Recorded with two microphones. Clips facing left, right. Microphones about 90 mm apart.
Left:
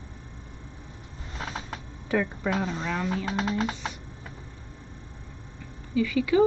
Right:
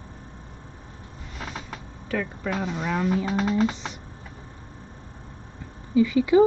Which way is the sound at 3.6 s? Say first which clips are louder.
Right 5 dB; 20° right (ahead or behind).